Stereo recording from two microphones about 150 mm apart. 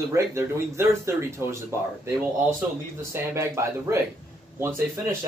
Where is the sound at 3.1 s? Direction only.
20° right (ahead or behind).